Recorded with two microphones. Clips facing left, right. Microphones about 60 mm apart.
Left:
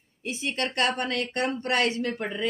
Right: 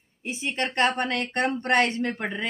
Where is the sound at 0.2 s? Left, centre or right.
Right.